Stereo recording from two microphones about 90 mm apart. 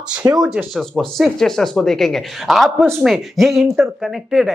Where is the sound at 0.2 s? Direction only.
40° right (ahead or behind).